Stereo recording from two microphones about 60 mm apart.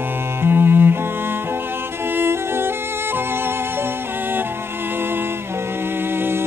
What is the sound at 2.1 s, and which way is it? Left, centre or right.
Music, right.